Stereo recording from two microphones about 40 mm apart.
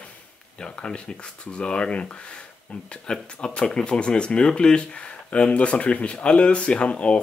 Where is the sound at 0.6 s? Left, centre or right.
Left.